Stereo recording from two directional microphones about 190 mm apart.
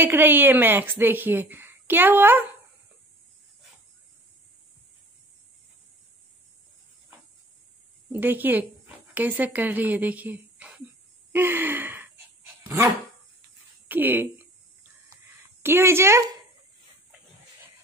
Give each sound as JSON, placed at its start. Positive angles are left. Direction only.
{"t": 0.0, "sound": "speech", "side_deg": -10}
{"t": 8.1, "sound": "speech", "side_deg": -10}
{"t": 11.3, "sound": "gasp", "side_deg": -10}
{"t": 12.6, "sound": "dog", "side_deg": -15}
{"t": 13.8, "sound": "speech", "side_deg": -10}
{"t": 15.6, "sound": "speech", "side_deg": -10}